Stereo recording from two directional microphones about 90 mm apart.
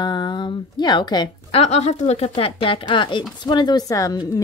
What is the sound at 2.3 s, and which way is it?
A woman's voice, 75° left (ahead or behind).